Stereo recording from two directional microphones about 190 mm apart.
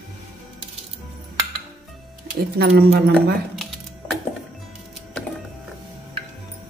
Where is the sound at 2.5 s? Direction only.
55° right (ahead or behind).